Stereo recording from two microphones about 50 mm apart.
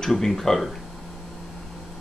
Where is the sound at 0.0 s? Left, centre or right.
Centre.